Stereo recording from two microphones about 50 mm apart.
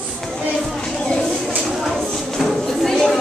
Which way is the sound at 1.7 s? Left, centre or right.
Centre.